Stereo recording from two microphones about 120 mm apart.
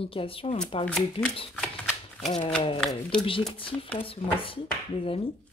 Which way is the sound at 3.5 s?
45° left (ahead or behind).